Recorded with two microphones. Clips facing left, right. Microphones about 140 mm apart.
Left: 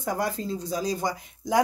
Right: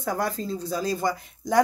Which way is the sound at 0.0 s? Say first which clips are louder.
Right 1 dB; 15° left (ahead or behind).